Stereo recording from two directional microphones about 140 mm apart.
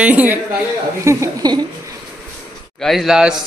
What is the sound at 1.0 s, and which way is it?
Speech, 25° right (ahead or behind).